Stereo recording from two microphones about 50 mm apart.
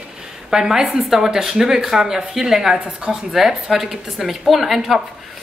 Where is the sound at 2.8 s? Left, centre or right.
Right.